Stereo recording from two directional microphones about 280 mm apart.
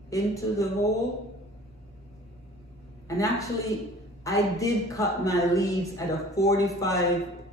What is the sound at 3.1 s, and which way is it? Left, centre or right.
A woman's voice, centre.